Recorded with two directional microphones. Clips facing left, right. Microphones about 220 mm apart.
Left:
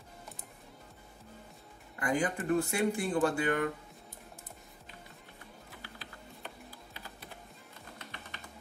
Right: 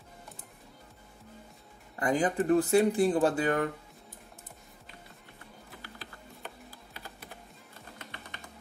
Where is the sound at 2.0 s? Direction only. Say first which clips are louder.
Right 4 dB; 35° right (ahead or behind).